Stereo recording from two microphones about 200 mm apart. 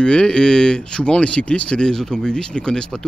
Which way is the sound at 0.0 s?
5° left (ahead or behind).